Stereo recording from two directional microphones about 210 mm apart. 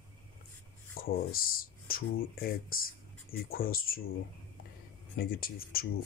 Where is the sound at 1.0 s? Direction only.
45° left (ahead or behind).